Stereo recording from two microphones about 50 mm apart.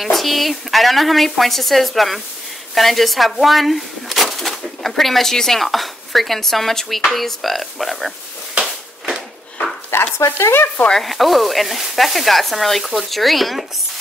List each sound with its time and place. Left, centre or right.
0.0 s speech: centre
9.8 s speech: left
10.5 s stir: left
10.9 s speech: centre